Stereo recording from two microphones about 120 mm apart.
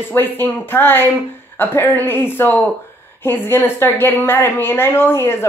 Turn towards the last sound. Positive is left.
turn(degrees=20)  # may be behind; listen again after turning